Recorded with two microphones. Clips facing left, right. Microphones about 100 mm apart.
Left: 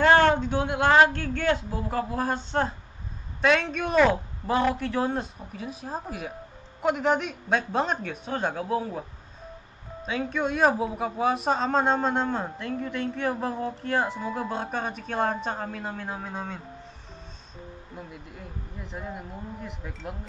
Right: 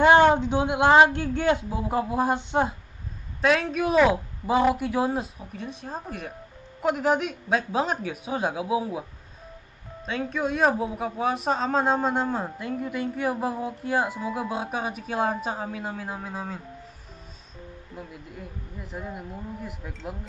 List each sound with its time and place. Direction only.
0.0 s speech: 15° right (ahead or behind)
3.3 s a man's voice: centre (ahead or behind)
10.0 s a man's voice: centre (ahead or behind)
17.9 s a man's voice: centre (ahead or behind)